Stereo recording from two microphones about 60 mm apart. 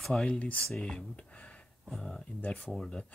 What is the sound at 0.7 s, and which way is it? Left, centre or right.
Speech, centre.